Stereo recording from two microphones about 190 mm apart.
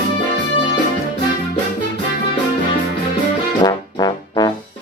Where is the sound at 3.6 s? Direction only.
20° left (ahead or behind).